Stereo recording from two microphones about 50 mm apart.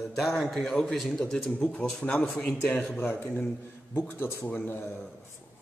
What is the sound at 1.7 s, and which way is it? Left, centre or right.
Speech, left.